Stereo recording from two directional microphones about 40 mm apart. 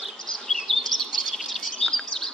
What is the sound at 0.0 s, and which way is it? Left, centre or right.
Bird vocalization, centre.